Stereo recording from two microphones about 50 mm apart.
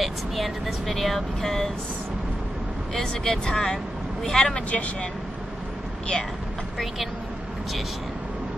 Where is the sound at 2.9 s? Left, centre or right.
Centre.